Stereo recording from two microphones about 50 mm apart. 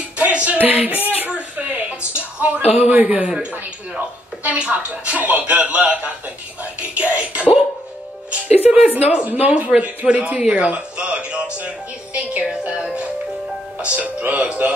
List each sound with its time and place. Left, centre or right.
0.2 s a sound: right
1.3 s a woman's voice: right
4.6 s speech: right
7.0 s speech: right